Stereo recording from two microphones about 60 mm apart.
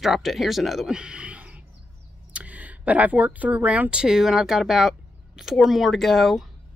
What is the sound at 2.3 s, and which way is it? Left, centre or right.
Speech, right.